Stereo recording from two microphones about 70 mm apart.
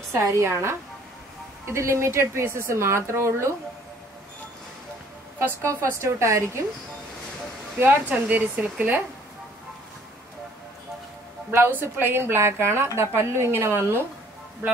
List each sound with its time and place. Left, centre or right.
0.1 s a woman's voice: right
5.6 s a woman's voice: right
7.8 s speech: right
11.5 s a woman's voice: right